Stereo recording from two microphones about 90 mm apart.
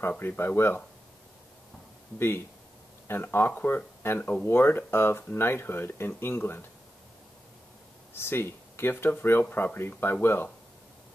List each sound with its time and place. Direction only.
0.2 s speech: 20° left (ahead or behind)
2.1 s speech: 25° left (ahead or behind)
8.1 s speech: 25° left (ahead or behind)